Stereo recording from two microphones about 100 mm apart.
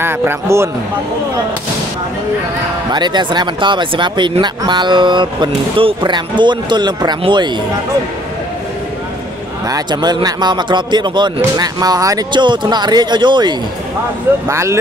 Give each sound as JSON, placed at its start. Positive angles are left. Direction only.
{"t": 0.0, "sound": "speech", "side_deg": -25}
{"t": 2.9, "sound": "speech", "side_deg": -50}
{"t": 9.7, "sound": "speech", "side_deg": -40}
{"t": 12.3, "sound": "speech", "side_deg": -50}
{"t": 14.5, "sound": "speech", "side_deg": -30}